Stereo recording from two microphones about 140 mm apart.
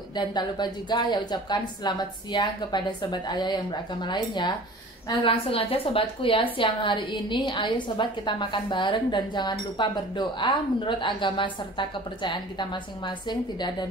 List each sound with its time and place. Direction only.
0.1 s a woman's voice: 30° left (ahead or behind)